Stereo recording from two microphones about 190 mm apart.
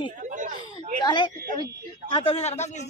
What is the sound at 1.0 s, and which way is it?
A woman's voice, 25° left (ahead or behind).